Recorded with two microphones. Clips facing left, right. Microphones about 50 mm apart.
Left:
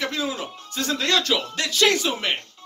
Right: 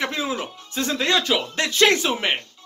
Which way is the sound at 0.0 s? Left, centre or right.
Right.